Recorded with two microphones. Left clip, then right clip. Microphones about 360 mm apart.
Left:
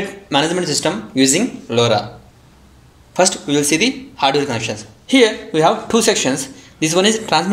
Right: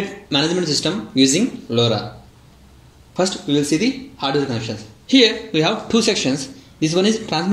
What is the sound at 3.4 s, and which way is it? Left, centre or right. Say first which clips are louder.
Speech: left 3 dB; left.